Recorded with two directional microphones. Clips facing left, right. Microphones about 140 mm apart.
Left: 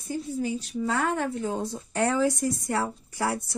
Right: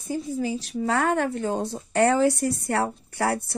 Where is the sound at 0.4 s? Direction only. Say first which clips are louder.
Right 2 dB; 90° right.